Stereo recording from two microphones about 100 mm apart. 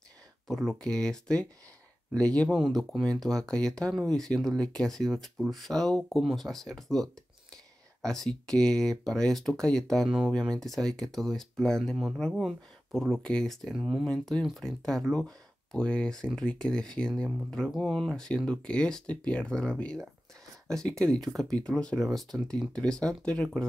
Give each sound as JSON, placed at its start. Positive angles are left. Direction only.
{"t": 0.5, "sound": "speech", "side_deg": 5}